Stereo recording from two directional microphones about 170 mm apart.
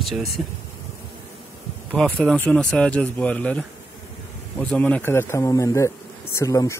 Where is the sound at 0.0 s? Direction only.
Centre (ahead or behind).